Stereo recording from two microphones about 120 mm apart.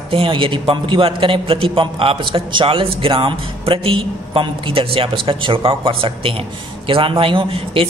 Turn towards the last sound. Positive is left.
turn(degrees=-50)  # may be behind; listen again after turning